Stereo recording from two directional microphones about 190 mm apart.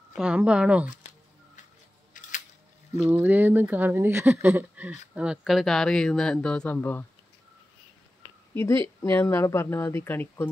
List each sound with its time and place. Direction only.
0.1 s speech: 5° right (ahead or behind)
2.1 s a sound: 40° left (ahead or behind)
3.1 s speech: 10° right (ahead or behind); by 7.1 s 10° left (ahead or behind)
8.5 s speech: 15° left (ahead or behind)